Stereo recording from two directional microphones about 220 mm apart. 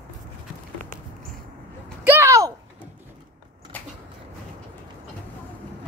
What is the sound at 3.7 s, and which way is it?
Vehicle, 10° left (ahead or behind).